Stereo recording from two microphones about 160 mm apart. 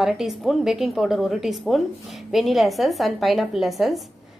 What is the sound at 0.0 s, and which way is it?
A woman's voice, centre (ahead or behind).